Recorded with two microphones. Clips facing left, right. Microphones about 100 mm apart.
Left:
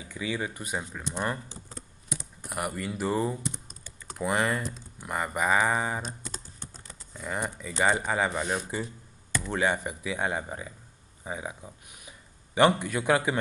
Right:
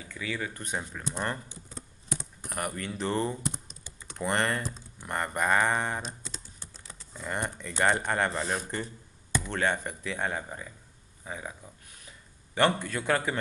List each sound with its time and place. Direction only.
0.1 s speech: 15° left (ahead or behind)
0.7 s speech: 5° left (ahead or behind)
2.5 s speech: 5° left (ahead or behind)
6.0 s typing: 45° left (ahead or behind)
6.9 s speech: centre (ahead or behind)